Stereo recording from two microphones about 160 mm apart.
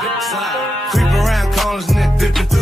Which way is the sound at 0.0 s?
Centre (ahead or behind).